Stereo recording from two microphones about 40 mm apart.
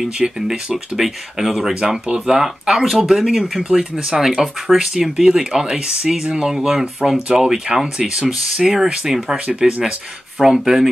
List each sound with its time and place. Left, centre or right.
0.2 s speech: centre
2.0 s speech: centre
3.6 s speech: right
4.3 s speech: centre
10.4 s speech: centre